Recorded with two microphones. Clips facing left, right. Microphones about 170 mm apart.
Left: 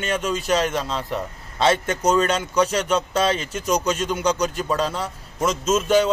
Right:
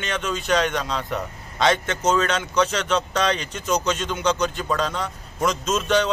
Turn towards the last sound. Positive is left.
turn(degrees=10)  # may be behind; listen again after turning